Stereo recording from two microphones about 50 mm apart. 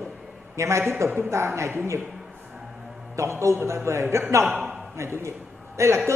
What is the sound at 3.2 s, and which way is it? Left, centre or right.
A man's voice, right.